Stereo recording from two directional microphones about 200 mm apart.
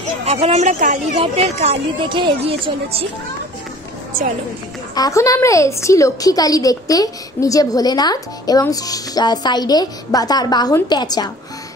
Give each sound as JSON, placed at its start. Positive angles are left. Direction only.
{"t": 0.2, "sound": "speech", "side_deg": -35}
{"t": 4.9, "sound": "a woman's voice", "side_deg": 15}